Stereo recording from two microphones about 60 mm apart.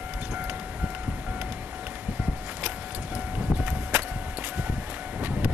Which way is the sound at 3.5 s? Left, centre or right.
Right.